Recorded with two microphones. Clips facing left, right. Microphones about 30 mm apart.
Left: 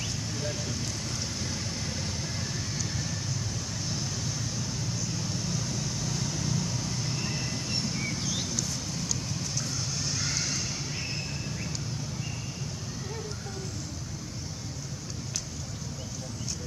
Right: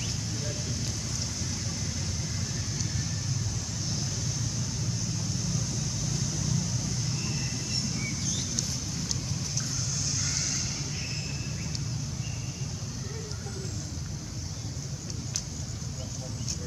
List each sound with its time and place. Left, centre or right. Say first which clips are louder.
0.0 s a sound: left 1 dB; centre
2.0 s vehicle: left 1 dB; left
5.5 s vehicle: even; centre
9.9 s vehicle: left 1 dB; left